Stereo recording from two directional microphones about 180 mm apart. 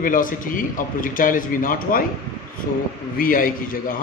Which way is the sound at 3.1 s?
50° left (ahead or behind).